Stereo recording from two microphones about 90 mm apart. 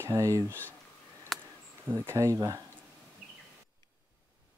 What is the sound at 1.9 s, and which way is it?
Speech, 25° right (ahead or behind).